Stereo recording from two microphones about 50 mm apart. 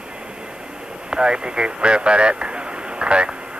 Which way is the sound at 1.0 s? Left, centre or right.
Centre.